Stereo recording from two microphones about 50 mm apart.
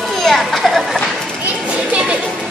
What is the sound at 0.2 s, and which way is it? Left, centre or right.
Children playing, centre.